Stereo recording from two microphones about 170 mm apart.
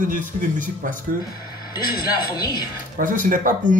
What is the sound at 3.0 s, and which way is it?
Speech, 50° right (ahead or behind).